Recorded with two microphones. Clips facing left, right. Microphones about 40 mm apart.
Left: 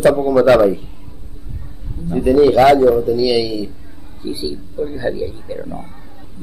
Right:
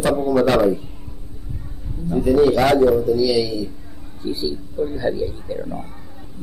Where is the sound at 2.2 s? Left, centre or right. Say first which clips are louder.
Left 5 dB; left.